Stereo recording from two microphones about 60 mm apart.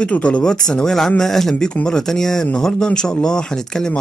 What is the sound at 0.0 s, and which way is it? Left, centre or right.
Speech, left.